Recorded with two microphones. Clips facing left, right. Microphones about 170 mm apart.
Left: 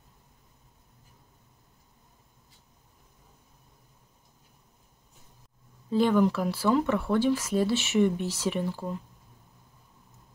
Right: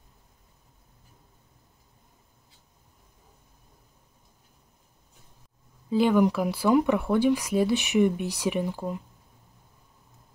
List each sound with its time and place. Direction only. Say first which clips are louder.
5.9 s speech: right 2 dB; 10° right (ahead or behind)